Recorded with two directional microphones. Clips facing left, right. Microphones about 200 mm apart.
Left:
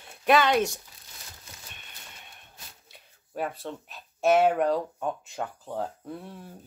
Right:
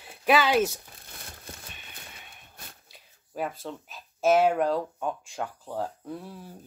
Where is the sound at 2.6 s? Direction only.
60° right (ahead or behind).